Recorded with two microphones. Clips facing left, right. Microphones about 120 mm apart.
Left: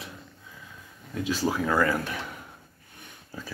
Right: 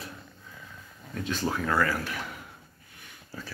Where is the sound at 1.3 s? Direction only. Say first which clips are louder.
Left 3 dB; 5° left (ahead or behind).